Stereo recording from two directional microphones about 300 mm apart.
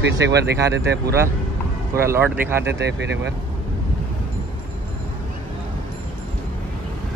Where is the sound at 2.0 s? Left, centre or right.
Centre.